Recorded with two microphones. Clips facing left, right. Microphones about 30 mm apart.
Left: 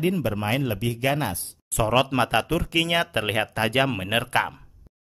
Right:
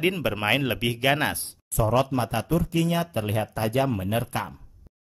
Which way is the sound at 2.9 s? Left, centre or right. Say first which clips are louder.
Left 3 dB; left.